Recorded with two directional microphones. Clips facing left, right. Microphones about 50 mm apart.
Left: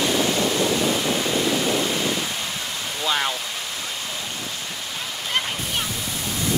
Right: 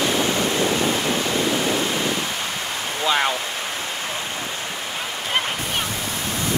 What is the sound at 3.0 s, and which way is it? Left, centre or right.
Waterfall, centre.